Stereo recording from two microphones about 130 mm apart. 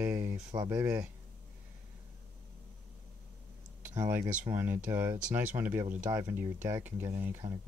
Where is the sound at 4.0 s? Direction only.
20° right (ahead or behind).